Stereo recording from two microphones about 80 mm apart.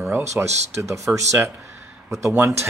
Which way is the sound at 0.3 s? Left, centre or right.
Right.